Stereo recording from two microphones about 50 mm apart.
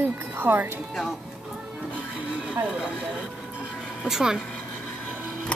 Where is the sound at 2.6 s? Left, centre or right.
Right.